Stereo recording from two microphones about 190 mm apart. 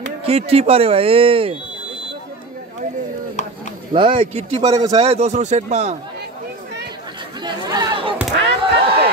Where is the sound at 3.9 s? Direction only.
25° right (ahead or behind).